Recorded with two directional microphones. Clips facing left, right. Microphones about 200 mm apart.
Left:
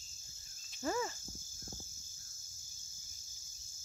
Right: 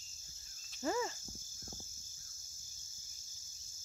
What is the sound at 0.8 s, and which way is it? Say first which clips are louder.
Cricket: even; 20° right (ahead or behind).